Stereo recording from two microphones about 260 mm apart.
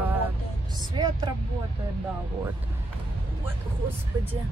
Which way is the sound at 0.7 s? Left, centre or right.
Centre.